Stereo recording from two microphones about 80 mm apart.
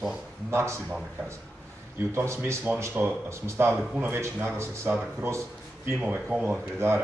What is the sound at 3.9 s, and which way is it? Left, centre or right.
Speech, centre.